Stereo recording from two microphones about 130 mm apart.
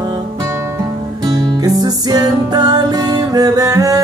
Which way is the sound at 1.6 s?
30° right (ahead or behind).